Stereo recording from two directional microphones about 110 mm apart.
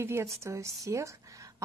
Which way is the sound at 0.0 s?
25° right (ahead or behind).